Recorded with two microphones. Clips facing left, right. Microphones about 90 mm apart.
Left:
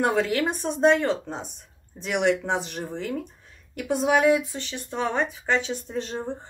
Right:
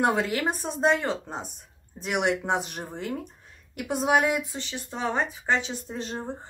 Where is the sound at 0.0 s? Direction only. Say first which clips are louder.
Left 2 dB; 5° right (ahead or behind).